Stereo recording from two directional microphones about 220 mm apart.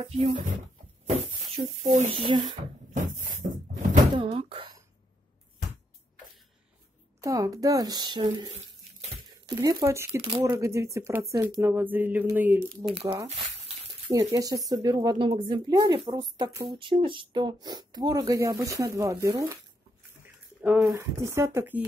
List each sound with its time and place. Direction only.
0.1 s speech: 30° right (ahead or behind)
1.0 s a sound: 30° right (ahead or behind)
2.9 s cupboard open or close: 35° right (ahead or behind)
4.2 s a sound: 25° right (ahead or behind)
7.2 s speech: 15° right (ahead or behind)
9.6 s speech: 15° right (ahead or behind)
14.0 s speech: 15° right (ahead or behind)
20.6 s speech: 5° right (ahead or behind)